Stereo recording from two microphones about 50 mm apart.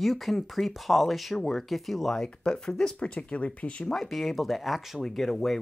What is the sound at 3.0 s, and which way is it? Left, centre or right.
Speech, left.